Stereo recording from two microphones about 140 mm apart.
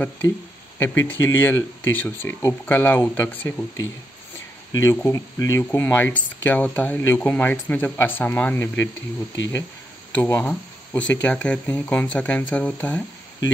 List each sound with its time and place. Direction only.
0.7 s speech: 15° left (ahead or behind)
5.1 s speech: 25° left (ahead or behind)